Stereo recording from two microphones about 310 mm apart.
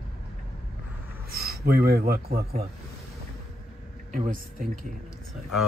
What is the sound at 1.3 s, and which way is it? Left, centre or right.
Speech, right.